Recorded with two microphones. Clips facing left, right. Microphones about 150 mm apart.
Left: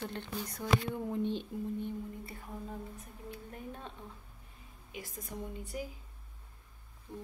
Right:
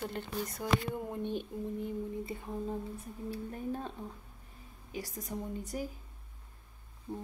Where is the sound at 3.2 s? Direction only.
35° right (ahead or behind).